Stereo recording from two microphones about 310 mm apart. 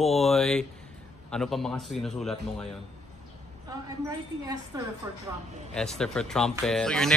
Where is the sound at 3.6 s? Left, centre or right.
Centre.